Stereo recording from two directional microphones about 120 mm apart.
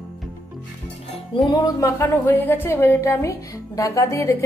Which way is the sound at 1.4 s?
35° left (ahead or behind).